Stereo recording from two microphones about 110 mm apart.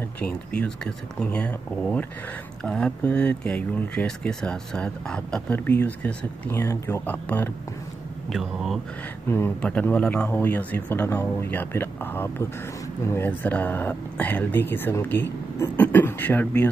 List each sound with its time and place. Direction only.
0.2 s speech: 10° left (ahead or behind)
8.3 s speech: centre (ahead or behind)
9.6 s speech: 10° left (ahead or behind)